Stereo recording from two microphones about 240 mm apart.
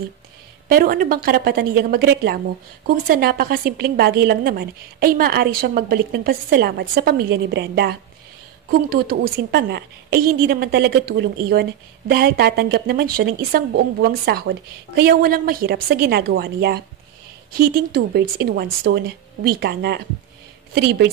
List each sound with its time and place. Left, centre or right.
0.7 s a woman's voice: right